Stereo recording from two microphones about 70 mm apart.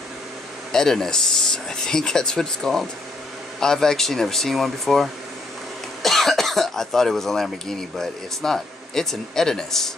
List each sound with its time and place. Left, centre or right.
0.7 s speech: centre
6.0 s speech: centre